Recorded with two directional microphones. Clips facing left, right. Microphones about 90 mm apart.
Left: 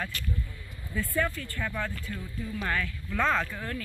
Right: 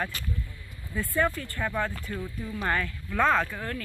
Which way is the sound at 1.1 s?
20° right (ahead or behind).